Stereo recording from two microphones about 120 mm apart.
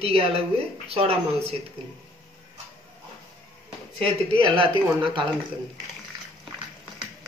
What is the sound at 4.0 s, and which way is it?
Speech, 45° right (ahead or behind).